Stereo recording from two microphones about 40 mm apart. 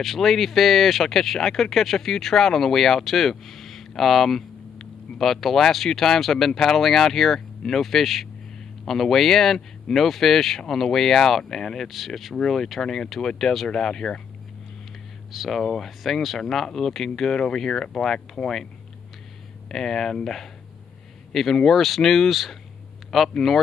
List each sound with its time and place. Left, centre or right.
0.0 s speech: centre
11.9 s speech: centre
15.3 s speech: centre
16.0 s speech: centre
19.7 s speech: centre